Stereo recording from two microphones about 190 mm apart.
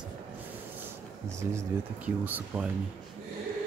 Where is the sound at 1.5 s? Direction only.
10° right (ahead or behind).